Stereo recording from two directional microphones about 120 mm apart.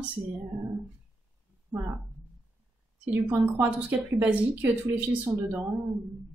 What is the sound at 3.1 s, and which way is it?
Speech, 10° right (ahead or behind).